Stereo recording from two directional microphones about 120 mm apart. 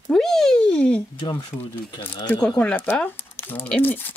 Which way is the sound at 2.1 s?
20° left (ahead or behind).